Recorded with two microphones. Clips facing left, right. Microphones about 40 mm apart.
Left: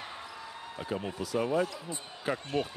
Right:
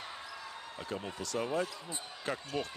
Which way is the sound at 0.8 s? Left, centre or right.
Centre.